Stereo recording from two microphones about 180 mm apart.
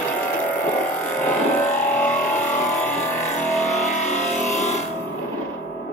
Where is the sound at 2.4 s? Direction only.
45° left (ahead or behind).